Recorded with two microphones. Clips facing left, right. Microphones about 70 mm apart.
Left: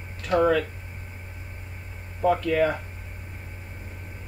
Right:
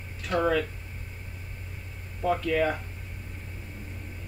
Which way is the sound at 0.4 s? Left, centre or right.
Left.